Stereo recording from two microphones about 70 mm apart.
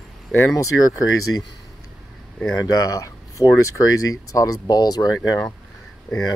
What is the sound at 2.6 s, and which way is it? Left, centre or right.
Speech, left.